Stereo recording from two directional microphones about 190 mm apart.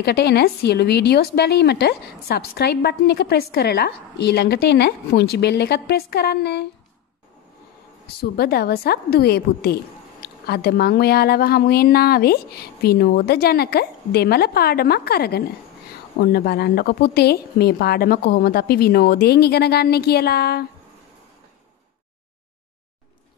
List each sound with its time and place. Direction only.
0.0 s speech: 60° left (ahead or behind)
8.2 s speech: 55° left (ahead or behind)